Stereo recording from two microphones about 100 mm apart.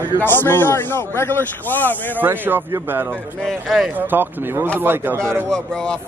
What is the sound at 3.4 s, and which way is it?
Speech, centre (ahead or behind).